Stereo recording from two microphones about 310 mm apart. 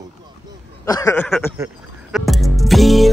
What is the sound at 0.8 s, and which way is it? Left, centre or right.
Speech, centre.